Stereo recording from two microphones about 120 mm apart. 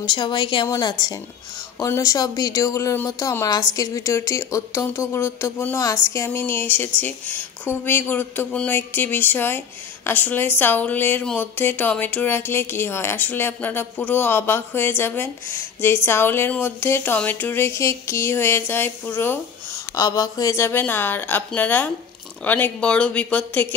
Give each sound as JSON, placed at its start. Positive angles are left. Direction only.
{"t": 0.0, "sound": "speech", "side_deg": 40}